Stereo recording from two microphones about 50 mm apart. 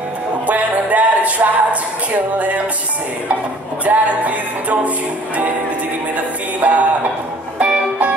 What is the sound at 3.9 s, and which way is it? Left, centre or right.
Music, right.